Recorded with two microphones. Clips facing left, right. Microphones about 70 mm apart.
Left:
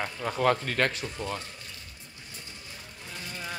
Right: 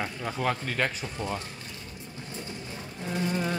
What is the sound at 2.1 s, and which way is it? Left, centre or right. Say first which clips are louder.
Vehicle: right 9 dB; right.